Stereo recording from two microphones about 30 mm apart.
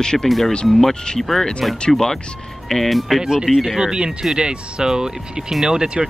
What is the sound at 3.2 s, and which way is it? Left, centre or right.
Speech, right.